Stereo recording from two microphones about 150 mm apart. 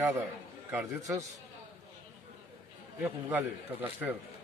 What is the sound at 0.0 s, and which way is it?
A man's voice, 15° right (ahead or behind).